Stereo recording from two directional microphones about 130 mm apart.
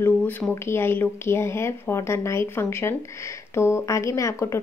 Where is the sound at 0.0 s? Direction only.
15° left (ahead or behind).